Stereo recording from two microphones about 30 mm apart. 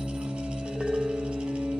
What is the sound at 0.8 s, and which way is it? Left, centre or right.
Music, right.